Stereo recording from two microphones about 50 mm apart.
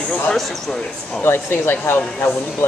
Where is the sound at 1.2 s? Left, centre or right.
Left.